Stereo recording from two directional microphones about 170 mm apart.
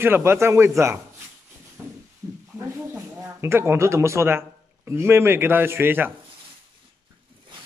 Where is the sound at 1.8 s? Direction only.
15° right (ahead or behind).